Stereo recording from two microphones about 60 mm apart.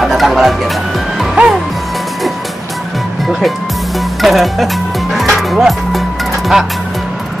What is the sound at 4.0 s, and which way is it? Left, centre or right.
Music, centre.